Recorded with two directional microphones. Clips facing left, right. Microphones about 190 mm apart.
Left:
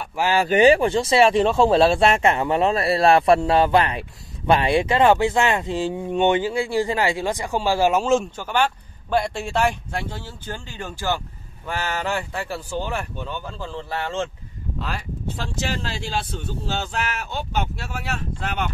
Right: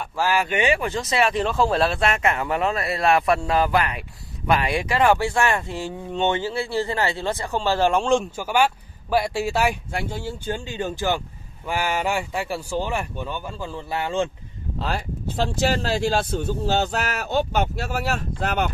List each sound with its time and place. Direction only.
0.2 s speech: 30° left (ahead or behind); by 8.3 s 5° left (ahead or behind)
8.4 s speech: 10° right (ahead or behind)
14.8 s speech: 35° right (ahead or behind)